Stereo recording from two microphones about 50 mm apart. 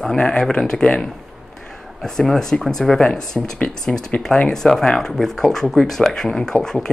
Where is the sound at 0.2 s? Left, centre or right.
Centre.